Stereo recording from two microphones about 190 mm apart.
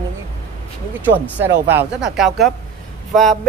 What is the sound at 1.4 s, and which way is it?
A woman's voice, 10° right (ahead or behind).